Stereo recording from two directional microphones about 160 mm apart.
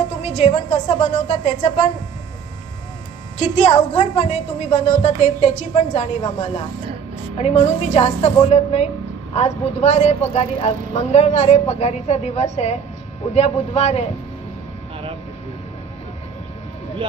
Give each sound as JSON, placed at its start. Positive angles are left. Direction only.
{"t": 0.2, "sound": "a woman's voice", "side_deg": 40}
{"t": 3.3, "sound": "a woman's voice", "side_deg": 40}